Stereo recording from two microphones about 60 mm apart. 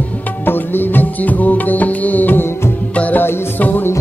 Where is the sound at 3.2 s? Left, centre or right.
Left.